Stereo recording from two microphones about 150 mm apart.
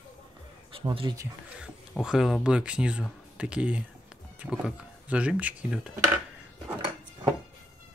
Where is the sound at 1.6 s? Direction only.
5° right (ahead or behind).